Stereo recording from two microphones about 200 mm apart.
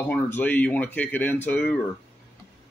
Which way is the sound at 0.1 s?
10° left (ahead or behind).